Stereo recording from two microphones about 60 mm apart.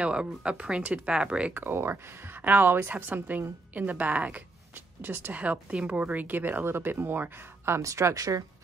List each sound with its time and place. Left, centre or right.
0.0 s speech: centre
1.5 s speech: right
5.0 s speech: right
5.3 s speech: right
7.8 s speech: right